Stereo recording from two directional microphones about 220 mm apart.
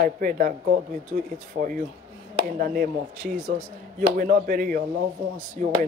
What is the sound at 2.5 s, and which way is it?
Speech, 40° right (ahead or behind).